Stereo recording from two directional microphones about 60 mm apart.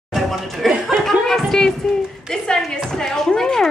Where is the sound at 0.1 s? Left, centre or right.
Centre.